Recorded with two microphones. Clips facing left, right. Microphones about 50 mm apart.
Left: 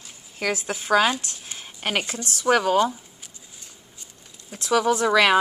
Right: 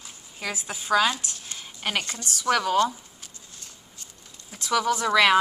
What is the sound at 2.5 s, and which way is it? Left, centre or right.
Speech, centre.